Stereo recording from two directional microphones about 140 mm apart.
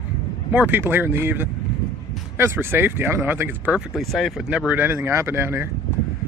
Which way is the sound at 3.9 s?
Centre (ahead or behind).